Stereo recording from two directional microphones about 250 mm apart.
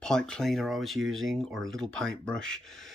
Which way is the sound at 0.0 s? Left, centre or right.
Centre.